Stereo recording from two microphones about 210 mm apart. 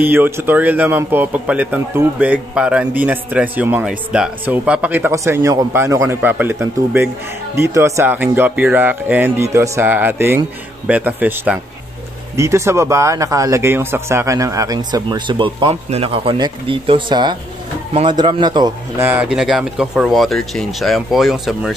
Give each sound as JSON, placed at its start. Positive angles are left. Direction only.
{"t": 0.0, "sound": "speech", "side_deg": -10}
{"t": 19.0, "sound": "speech", "side_deg": -5}